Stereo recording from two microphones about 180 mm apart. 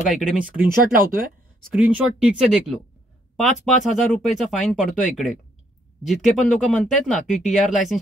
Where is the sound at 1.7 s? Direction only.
5° right (ahead or behind).